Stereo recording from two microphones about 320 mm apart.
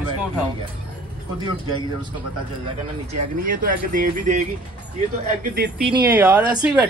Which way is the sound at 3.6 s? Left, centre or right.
Right.